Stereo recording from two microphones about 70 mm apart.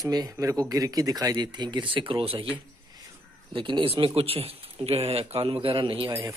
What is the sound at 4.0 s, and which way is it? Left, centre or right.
Speech, right.